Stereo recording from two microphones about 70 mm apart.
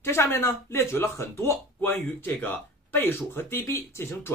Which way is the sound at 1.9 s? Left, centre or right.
Left.